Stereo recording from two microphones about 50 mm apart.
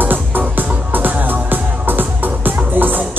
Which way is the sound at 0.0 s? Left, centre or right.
Right.